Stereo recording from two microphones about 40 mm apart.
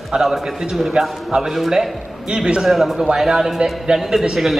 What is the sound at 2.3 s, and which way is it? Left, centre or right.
Speech, right.